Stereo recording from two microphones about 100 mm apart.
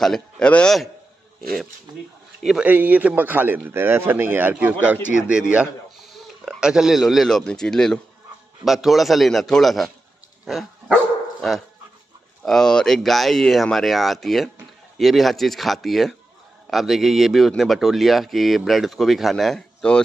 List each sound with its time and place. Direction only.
0.0 s a man's voice: 5° left (ahead or behind)
2.4 s speech: 5° right (ahead or behind)
2.7 s a man's voice: 15° right (ahead or behind); by 11.0 s centre (ahead or behind)
12.4 s speech: 5° left (ahead or behind)